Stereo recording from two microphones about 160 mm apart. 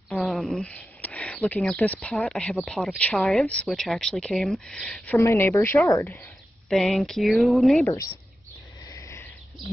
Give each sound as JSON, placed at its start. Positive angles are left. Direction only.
{"t": 0.1, "sound": "speech", "side_deg": 0}
{"t": 5.1, "sound": "speech", "side_deg": 15}
{"t": 6.7, "sound": "speech", "side_deg": 0}
{"t": 8.8, "sound": "a sound", "side_deg": 20}